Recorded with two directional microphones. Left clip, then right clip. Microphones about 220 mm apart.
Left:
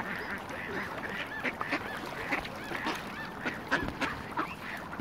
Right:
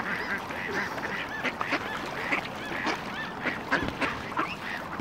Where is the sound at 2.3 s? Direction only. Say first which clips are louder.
Right 4 dB; 15° left (ahead or behind).